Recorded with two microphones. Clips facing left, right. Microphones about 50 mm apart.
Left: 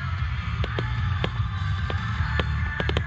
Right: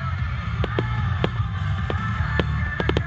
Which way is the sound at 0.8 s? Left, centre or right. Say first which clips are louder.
Right 5 dB; right.